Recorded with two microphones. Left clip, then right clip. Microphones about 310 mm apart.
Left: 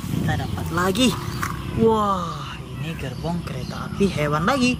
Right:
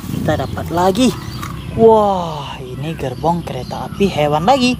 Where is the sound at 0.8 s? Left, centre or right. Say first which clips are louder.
Right 6 dB; centre.